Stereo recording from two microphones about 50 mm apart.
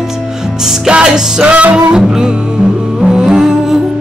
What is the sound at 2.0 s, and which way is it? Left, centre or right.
Music, centre.